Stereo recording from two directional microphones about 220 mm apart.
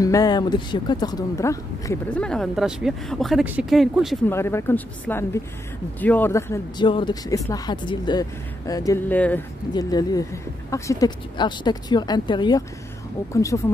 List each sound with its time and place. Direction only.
0.0 s speech: 15° left (ahead or behind); by 4.2 s centre (ahead or behind)
4.3 s speech: 10° left (ahead or behind)